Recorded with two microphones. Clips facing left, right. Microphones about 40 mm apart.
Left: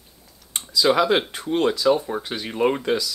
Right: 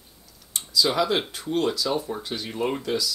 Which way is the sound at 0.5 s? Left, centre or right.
Left.